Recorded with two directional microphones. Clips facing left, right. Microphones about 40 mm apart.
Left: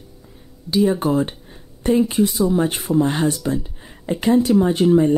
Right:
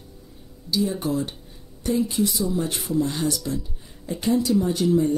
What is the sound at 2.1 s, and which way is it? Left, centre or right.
Speech, left.